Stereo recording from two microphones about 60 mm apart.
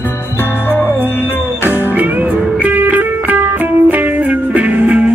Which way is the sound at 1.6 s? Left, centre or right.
Right.